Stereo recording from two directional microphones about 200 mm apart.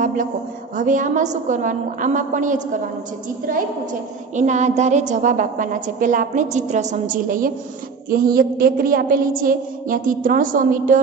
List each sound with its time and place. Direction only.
0.7 s a woman's voice: 40° right (ahead or behind)
4.4 s a woman's voice: 35° right (ahead or behind)